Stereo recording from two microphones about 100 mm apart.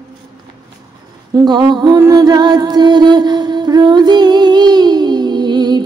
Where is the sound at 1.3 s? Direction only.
45° right (ahead or behind).